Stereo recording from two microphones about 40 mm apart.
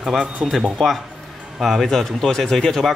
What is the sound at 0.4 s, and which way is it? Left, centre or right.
Speech, centre.